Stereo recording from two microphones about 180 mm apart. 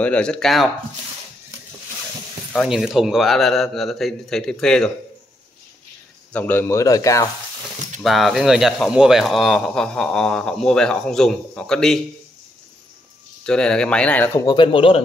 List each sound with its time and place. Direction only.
0.0 s speech: 5° left (ahead or behind)
2.5 s speech: centre (ahead or behind)
6.3 s speech: 10° left (ahead or behind)
8.0 s speech: centre (ahead or behind)
13.5 s speech: 5° left (ahead or behind)
14.4 s speech: 25° left (ahead or behind)